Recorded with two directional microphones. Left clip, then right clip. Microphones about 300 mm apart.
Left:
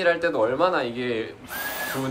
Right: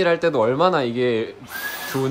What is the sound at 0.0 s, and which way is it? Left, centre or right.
Speech, right.